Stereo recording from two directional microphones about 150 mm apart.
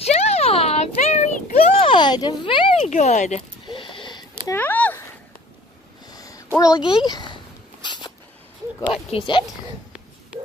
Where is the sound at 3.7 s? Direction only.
35° left (ahead or behind).